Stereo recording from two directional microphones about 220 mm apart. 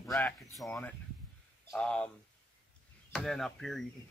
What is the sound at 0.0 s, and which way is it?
Speech, 15° left (ahead or behind).